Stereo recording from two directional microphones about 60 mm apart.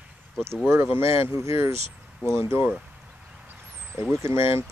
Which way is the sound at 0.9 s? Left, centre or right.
Right.